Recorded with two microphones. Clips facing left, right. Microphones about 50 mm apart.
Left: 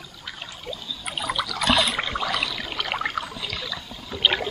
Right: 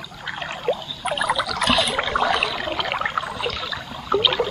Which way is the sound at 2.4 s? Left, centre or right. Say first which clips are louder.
Right 6 dB; right.